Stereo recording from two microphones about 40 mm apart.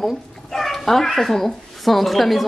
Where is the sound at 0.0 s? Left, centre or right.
Centre.